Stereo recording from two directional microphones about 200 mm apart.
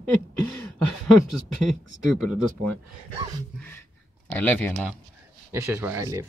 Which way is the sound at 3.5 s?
10° left (ahead or behind).